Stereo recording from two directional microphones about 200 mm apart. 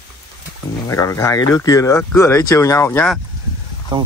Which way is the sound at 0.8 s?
15° left (ahead or behind).